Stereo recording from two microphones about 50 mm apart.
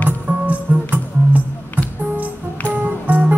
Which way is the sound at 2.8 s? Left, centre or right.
Right.